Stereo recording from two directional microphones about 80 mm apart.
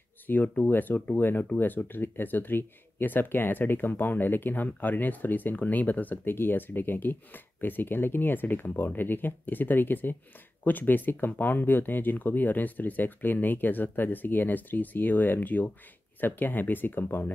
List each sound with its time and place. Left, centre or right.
0.3 s speech: left